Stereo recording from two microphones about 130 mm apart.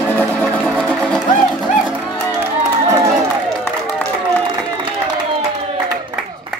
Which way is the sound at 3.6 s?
15° left (ahead or behind).